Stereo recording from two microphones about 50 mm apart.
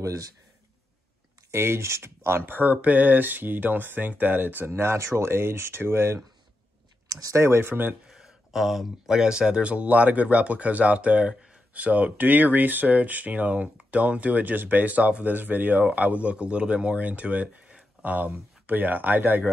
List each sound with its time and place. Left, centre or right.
1.5 s speech: right
7.3 s speech: right
8.1 s a sound: centre
9.1 s speech: centre; by 19.5 s right